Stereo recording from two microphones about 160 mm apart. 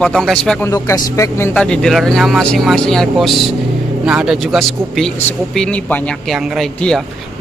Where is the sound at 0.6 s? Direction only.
20° left (ahead or behind).